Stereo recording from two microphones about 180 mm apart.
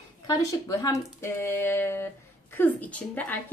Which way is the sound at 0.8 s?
15° left (ahead or behind).